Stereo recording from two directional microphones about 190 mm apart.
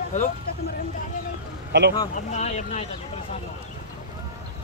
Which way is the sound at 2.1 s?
35° left (ahead or behind).